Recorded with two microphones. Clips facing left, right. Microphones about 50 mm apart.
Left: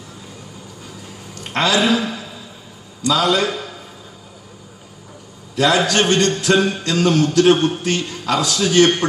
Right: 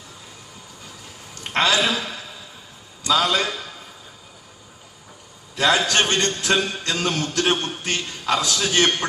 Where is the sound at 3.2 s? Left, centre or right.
Left.